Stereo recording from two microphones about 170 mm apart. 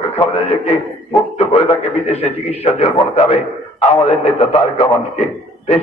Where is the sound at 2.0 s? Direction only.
35° left (ahead or behind).